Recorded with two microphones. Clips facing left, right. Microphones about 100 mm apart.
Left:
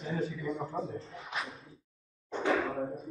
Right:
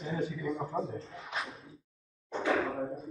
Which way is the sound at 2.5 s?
Centre (ahead or behind).